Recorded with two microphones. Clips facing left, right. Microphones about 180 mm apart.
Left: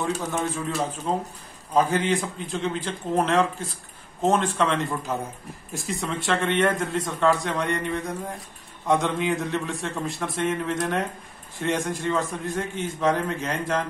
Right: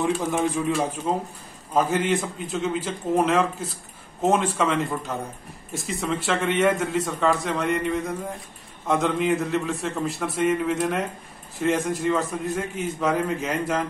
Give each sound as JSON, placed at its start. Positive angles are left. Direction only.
{"t": 0.0, "sound": "a man's voice", "side_deg": -15}